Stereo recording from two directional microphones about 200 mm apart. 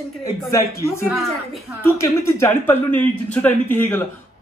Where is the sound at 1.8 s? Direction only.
15° left (ahead or behind).